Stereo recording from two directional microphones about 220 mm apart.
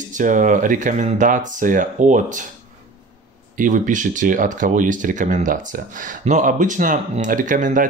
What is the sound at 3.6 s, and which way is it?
Speech, 35° right (ahead or behind).